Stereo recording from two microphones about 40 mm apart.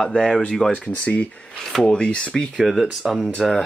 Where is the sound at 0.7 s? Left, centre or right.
Left.